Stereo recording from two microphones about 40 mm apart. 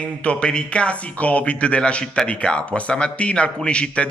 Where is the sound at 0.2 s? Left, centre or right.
Left.